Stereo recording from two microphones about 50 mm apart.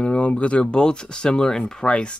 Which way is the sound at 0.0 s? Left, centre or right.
Left.